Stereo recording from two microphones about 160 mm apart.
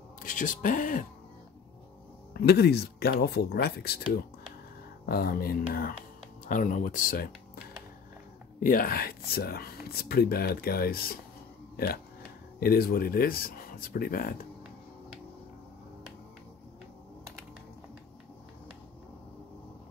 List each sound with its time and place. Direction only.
0.2 s speech: 55° left (ahead or behind)
2.3 s speech: 85° left
5.0 s speech: 70° left (ahead or behind)
6.4 s speech: 55° left (ahead or behind)
8.5 s speech: 60° left (ahead or behind)